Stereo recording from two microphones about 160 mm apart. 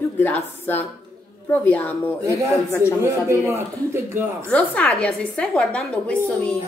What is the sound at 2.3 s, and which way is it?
A man's voice, 20° right (ahead or behind).